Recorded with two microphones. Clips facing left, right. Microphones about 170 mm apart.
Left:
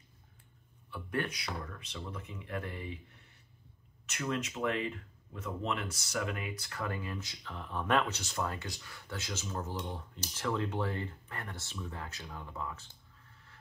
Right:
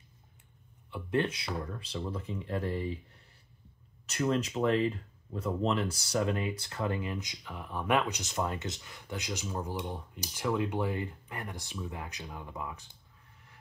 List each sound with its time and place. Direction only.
0.8 s speech: 25° right (ahead or behind)
4.0 s speech: 35° right (ahead or behind); by 12.8 s 15° right (ahead or behind)